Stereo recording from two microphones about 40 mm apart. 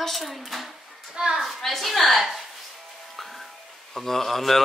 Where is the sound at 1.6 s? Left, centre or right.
Centre.